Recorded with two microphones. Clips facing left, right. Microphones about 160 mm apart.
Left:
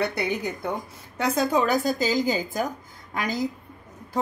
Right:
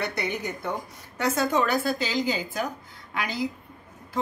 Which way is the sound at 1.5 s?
40° left (ahead or behind).